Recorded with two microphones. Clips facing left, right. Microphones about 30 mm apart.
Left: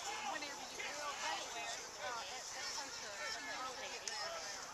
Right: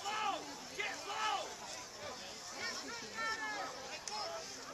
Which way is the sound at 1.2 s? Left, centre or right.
Right.